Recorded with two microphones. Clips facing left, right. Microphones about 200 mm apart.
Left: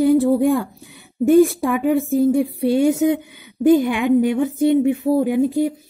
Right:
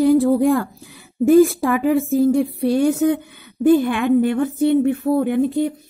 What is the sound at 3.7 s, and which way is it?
A woman's voice, 15° left (ahead or behind).